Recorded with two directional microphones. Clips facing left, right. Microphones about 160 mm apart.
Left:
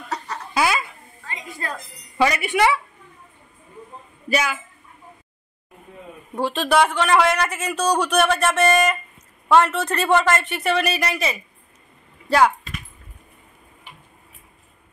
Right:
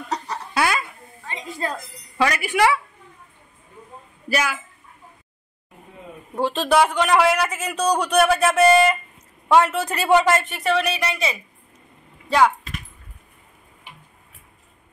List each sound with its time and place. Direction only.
0.6 s a sound: centre (ahead or behind)
1.2 s a sound: 25° right (ahead or behind)
2.1 s speech: centre (ahead or behind)
4.3 s speech: 5° right (ahead or behind)
6.4 s a man's voice: centre (ahead or behind)
10.5 s speech: centre (ahead or behind)